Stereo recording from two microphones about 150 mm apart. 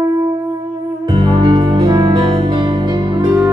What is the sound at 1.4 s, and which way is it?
Music, 25° right (ahead or behind).